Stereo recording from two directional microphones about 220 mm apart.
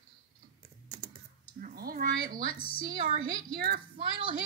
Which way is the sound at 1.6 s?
40° right (ahead or behind).